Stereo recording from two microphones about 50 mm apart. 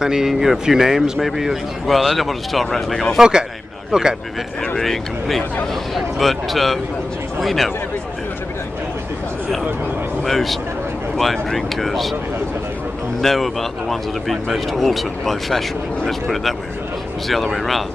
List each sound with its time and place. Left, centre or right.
0.0 s speech: centre
3.2 s a man's voice: centre
4.7 s speech: centre
10.2 s speech: centre
13.2 s speech: centre